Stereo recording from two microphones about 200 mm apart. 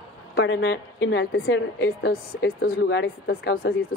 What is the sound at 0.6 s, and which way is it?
A woman's voice, 60° left (ahead or behind).